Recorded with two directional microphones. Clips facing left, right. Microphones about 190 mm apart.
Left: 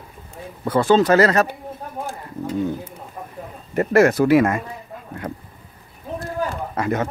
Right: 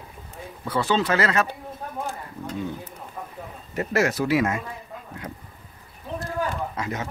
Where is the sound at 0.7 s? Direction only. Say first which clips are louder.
Left 8 dB; 45° left (ahead or behind).